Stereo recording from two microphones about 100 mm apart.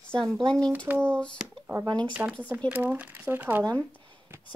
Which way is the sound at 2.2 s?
20° right (ahead or behind).